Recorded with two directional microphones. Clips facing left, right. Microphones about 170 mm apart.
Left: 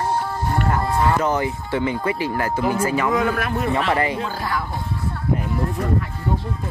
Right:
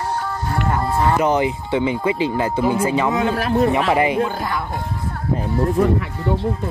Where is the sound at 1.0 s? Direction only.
20° right (ahead or behind); by 3.7 s 35° right (ahead or behind).